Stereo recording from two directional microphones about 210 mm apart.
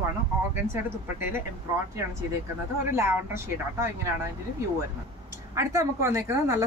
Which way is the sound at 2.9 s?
10° right (ahead or behind).